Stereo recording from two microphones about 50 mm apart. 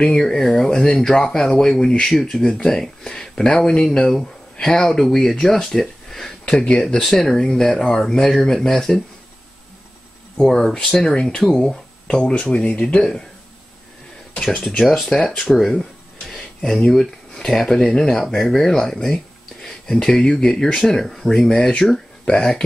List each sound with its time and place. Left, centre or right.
0.2 s speech: centre
6.5 s speech: centre
10.4 s speech: centre
12.2 s speech: centre
14.3 s a sound: centre
14.8 s speech: centre
15.5 s a sound: centre
17.5 s speech: centre